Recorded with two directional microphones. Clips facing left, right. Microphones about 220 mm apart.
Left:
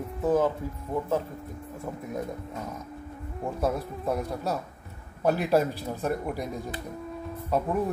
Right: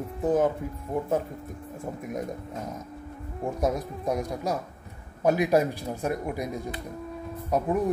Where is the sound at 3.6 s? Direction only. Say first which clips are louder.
Right 1 dB; 15° right (ahead or behind).